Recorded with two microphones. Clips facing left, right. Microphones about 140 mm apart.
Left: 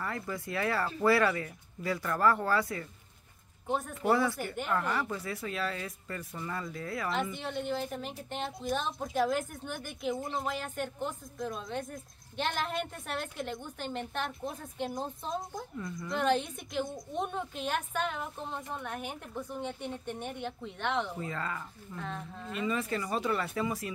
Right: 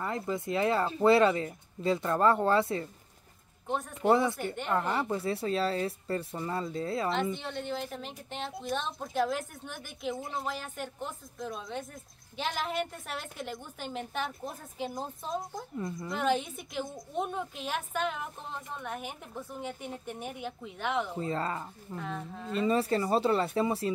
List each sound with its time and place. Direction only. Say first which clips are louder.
0.0 s speech: right 4 dB; 20° right (ahead or behind)
3.6 s speech: left 1 dB; centre (ahead or behind)
4.1 s speech: right 2 dB; 20° right (ahead or behind)
7.3 s a woman's voice: left 2 dB; centre (ahead or behind)
21.1 s speech: right 4 dB; 30° right (ahead or behind)
21.9 s a woman's voice: right 2 dB; 5° right (ahead or behind)
22.5 s speech: right 5 dB; 35° right (ahead or behind)